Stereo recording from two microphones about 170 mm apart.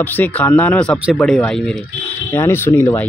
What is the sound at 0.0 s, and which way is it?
Speech, 10° left (ahead or behind).